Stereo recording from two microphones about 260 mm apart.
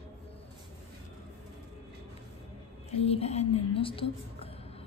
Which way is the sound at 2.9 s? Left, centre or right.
Left.